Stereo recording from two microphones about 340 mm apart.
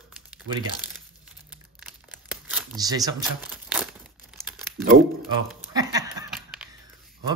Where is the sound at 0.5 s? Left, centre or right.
Right.